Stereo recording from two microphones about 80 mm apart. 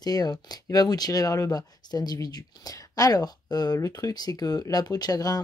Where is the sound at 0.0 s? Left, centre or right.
Left.